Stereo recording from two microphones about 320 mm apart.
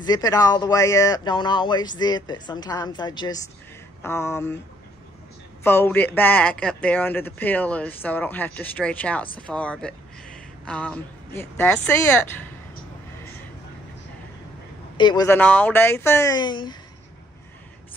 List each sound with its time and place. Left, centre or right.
0.0 s speech: centre
5.6 s a man's voice: centre
15.0 s speech: centre